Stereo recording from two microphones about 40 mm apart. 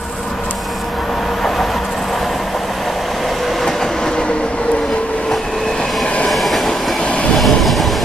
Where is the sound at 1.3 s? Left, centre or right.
Centre.